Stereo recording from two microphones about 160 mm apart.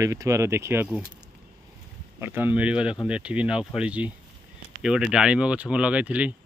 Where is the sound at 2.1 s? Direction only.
15° right (ahead or behind).